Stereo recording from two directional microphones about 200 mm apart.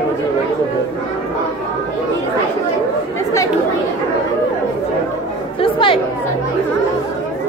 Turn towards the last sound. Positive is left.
turn(degrees=25)  # may be behind; listen again after turning